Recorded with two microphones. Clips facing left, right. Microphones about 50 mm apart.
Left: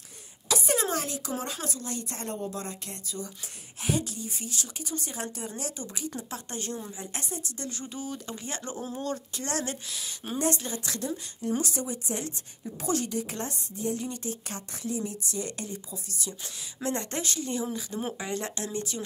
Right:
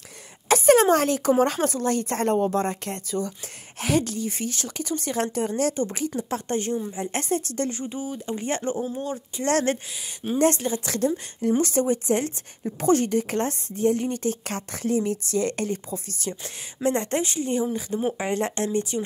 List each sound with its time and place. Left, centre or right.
0.5 s a sound: right
1.4 s speech: right
3.1 s a woman's voice: right
3.8 s speech: right
5.9 s speech: right
7.1 s speech: right
7.7 s speech: right
8.4 s speech: right
8.7 s speech: centre
9.5 s a woman's voice: right
14.4 s speech: right
16.8 s speech: right